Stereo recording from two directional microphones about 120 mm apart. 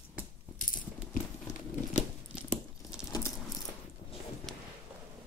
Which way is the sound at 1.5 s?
75° left (ahead or behind).